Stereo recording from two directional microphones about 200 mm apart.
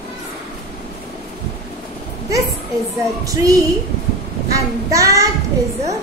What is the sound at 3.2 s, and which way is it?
Child singing, 15° right (ahead or behind).